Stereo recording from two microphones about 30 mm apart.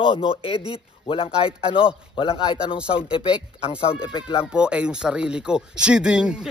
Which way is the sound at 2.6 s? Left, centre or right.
Right.